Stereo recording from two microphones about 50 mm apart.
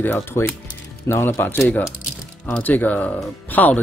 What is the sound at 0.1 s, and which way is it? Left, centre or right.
Speech, left.